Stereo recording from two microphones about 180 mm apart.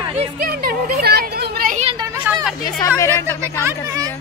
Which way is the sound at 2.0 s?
20° right (ahead or behind).